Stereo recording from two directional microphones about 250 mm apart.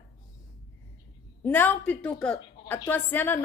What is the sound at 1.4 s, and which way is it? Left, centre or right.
A woman's voice, centre.